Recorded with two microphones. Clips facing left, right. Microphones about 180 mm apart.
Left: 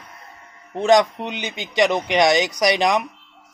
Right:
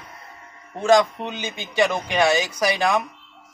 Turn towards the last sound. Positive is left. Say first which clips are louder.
# left 3 dB
turn(degrees=15)  # may be behind; listen again after turning